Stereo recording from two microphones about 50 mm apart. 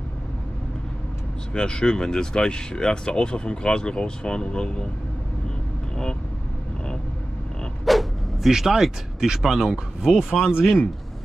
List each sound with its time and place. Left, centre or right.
1.5 s speech: centre
7.8 s dog: centre
8.5 s speech: centre